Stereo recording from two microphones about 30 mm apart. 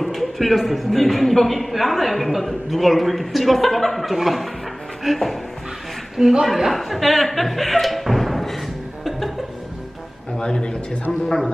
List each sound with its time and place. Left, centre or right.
0.0 s a man's voice: centre
6.2 s a woman's voice: centre
6.7 s speech: centre
10.4 s a man's voice: left
11.1 s a man's voice: centre